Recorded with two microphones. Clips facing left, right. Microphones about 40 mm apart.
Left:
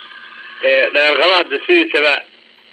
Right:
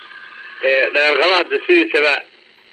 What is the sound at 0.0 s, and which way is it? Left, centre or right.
A man's voice, left.